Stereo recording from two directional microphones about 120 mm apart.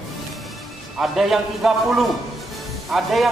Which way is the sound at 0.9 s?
Centre (ahead or behind).